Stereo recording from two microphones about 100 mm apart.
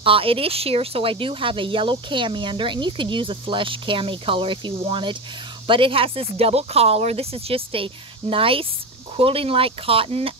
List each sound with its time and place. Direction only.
0.0 s speech: 65° right (ahead or behind)